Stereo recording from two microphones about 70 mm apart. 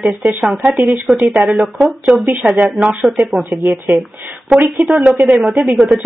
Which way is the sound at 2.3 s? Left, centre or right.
Centre.